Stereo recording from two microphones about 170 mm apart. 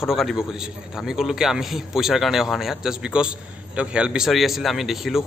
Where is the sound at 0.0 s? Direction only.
Centre (ahead or behind).